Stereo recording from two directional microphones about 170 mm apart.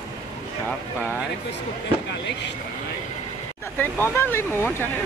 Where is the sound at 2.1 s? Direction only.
90° left.